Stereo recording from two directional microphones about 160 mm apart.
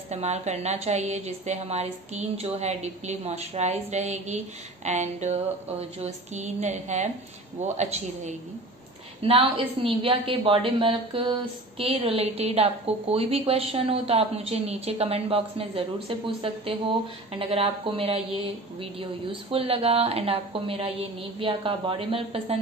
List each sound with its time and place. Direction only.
0.1 s a woman's voice: 45° right (ahead or behind)
9.2 s a woman's voice: 35° right (ahead or behind)